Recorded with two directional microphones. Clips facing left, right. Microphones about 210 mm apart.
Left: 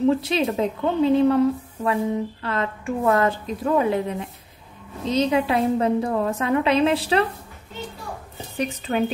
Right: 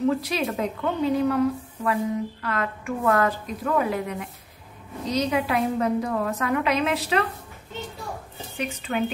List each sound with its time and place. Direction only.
0.2 s a woman's voice: 25° left (ahead or behind)
8.5 s a woman's voice: 35° left (ahead or behind)